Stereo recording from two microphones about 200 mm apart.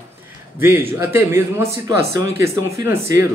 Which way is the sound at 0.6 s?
10° right (ahead or behind).